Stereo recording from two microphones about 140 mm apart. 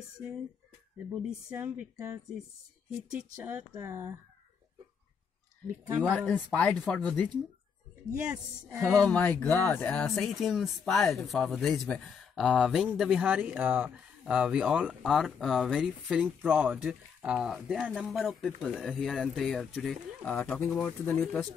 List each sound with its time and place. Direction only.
0.9 s speech: 5° right (ahead or behind)
3.3 s speech: 15° right (ahead or behind)
5.7 s speech: 15° right (ahead or behind)
6.0 s speech: centre (ahead or behind)
8.3 s speech: 5° right (ahead or behind)
9.0 s speech: 10° left (ahead or behind)